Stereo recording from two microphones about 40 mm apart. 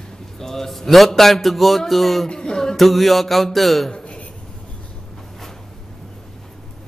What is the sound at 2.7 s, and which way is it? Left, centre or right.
Music, centre.